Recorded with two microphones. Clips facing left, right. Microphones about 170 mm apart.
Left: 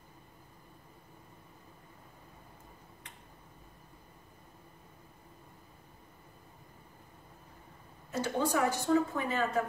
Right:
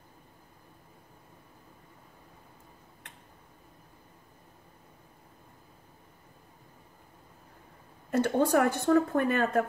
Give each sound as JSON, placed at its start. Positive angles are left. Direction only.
{"t": 8.1, "sound": "a woman's voice", "side_deg": -60}